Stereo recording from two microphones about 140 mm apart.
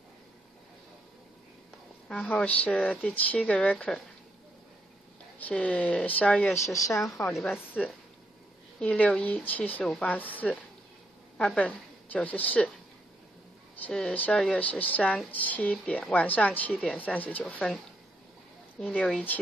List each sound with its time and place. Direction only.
2.0 s speech: 5° left (ahead or behind)
5.4 s speech: 10° left (ahead or behind)
6.5 s speech: 20° left (ahead or behind)
7.0 s speech: 5° left (ahead or behind)
8.7 s a woman's voice: 10° left (ahead or behind)
13.8 s speech: 10° left (ahead or behind)